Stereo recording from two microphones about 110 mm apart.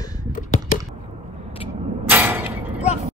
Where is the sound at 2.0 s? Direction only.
20° right (ahead or behind).